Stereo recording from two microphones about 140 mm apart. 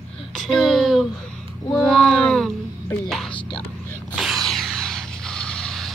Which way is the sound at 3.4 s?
35° left (ahead or behind).